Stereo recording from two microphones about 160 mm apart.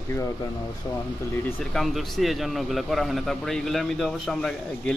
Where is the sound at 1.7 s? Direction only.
Centre (ahead or behind).